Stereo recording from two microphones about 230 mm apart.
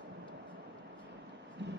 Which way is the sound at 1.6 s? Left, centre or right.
Right.